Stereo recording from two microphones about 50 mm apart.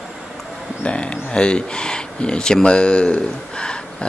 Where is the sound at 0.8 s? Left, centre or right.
Left.